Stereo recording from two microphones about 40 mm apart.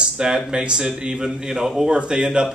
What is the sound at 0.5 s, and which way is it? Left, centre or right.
A man's voice, centre.